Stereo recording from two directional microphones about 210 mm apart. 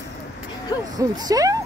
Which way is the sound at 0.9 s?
15° right (ahead or behind).